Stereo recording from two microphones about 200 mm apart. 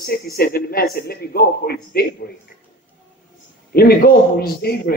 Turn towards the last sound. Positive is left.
turn(degrees=50)  # may be behind; listen again after turning